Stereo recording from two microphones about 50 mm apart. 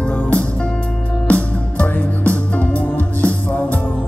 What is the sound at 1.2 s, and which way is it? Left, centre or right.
Music, left.